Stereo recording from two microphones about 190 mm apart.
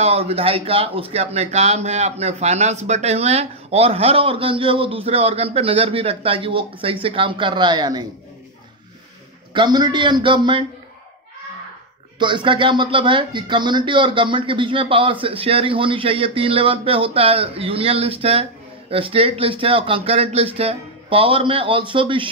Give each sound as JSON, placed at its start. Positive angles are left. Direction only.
{"t": 0.0, "sound": "speech", "side_deg": -30}
{"t": 9.5, "sound": "speech", "side_deg": -25}
{"t": 12.2, "sound": "speech", "side_deg": -25}